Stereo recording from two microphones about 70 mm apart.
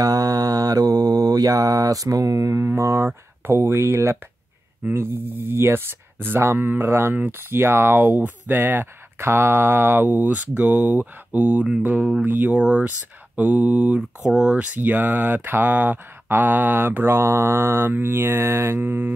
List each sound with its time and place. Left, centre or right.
0.0 s mantra: right
3.4 s speech: right